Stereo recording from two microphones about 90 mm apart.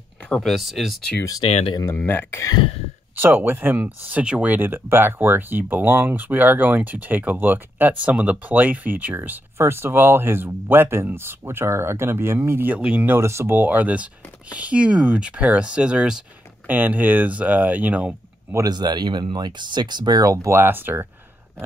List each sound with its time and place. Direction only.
0.4 s speech: centre (ahead or behind)
1.9 s speech: 25° left (ahead or behind)
3.2 s speech: 25° right (ahead or behind)
13.1 s speech: 30° right (ahead or behind)
13.6 s speech: 20° right (ahead or behind)
18.7 s speech: 50° right (ahead or behind); by 21.1 s 25° right (ahead or behind)